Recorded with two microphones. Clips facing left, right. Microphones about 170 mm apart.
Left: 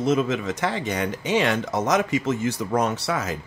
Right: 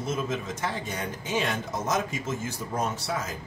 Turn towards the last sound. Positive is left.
turn(degrees=70)  # may be behind; listen again after turning